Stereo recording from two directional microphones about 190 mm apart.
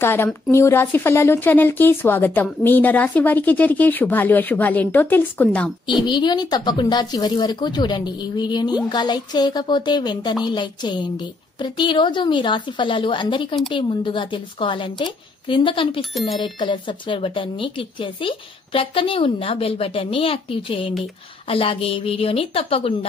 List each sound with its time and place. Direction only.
0.0 s speech: 10° left (ahead or behind)
6.0 s a woman's voice: 25° left (ahead or behind)